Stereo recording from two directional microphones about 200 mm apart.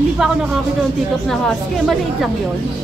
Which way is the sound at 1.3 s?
Centre (ahead or behind).